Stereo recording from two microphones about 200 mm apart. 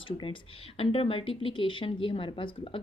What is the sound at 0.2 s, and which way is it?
Speech, 25° left (ahead or behind).